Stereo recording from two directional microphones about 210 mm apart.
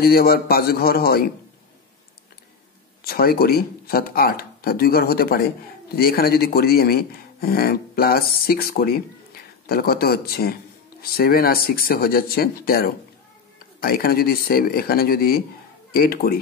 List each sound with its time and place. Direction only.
0.0 s speech: 45° left (ahead or behind)
3.0 s speech: 45° left (ahead or behind)